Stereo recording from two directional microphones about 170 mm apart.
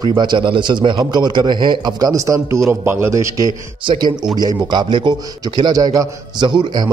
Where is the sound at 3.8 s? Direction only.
30° right (ahead or behind).